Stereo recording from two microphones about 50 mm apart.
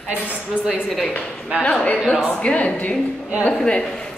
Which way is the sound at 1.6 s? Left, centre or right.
Left.